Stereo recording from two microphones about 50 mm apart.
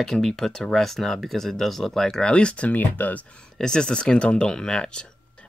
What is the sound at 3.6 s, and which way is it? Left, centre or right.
Speech, centre.